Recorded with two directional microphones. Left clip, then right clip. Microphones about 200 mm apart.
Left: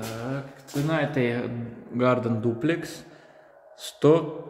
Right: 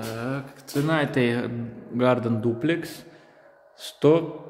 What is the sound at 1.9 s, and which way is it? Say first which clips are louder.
A man's voice: right 1 dB; 10° right (ahead or behind).